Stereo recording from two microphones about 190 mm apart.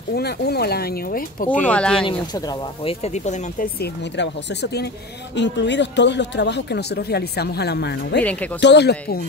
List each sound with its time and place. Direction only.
0.1 s speech: 60° left (ahead or behind)
1.5 s speech: 5° left (ahead or behind)
2.0 s speech: 25° left (ahead or behind)
3.8 s speech: 60° left (ahead or behind)
8.2 s speech: 10° left (ahead or behind)
8.5 s speech: 65° left (ahead or behind)